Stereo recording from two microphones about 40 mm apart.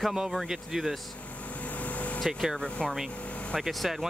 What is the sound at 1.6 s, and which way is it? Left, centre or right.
Vehicle, left.